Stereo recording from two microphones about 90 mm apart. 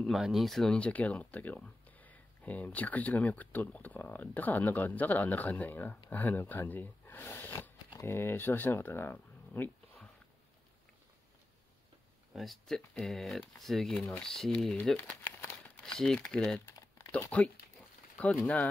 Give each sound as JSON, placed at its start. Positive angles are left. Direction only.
{"t": 0.0, "sound": "speech", "side_deg": 0}
{"t": 12.4, "sound": "speech", "side_deg": 5}
{"t": 16.6, "sound": "crumpling", "side_deg": 35}
{"t": 17.3, "sound": "speech", "side_deg": 15}